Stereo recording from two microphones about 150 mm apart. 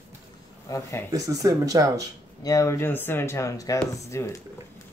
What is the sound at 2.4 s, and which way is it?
Speech, 20° left (ahead or behind).